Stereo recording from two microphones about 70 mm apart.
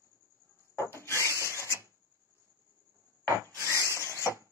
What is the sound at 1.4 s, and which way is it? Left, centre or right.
Printer, right.